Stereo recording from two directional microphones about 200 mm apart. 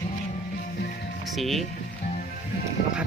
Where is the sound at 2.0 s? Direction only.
35° left (ahead or behind).